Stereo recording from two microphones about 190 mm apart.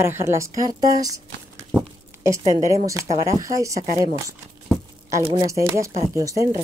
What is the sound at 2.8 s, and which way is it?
Speech, 15° right (ahead or behind).